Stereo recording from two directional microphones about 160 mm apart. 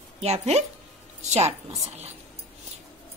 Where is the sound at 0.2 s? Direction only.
40° right (ahead or behind).